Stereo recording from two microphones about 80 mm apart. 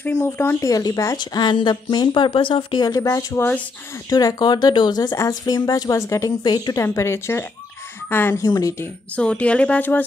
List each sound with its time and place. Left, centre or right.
0.0 s speech: left
0.6 s a woman's voice: left
1.1 s speech: left
2.9 s a woman's voice: left
3.3 s speech: left
4.1 s speech: left
5.1 s a woman's voice: left
6.4 s speech: left
6.8 s speech: left
8.4 s a woman's voice: left
9.1 s speech: centre